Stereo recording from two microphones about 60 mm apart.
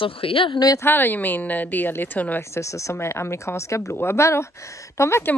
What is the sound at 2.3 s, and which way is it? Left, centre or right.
Speech, left.